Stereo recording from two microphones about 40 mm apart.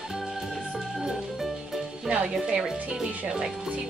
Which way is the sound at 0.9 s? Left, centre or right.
Centre.